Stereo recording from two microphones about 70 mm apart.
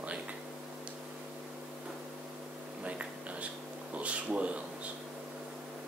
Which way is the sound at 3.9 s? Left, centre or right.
Centre.